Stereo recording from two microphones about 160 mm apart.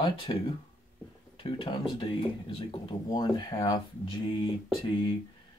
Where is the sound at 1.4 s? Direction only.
30° left (ahead or behind).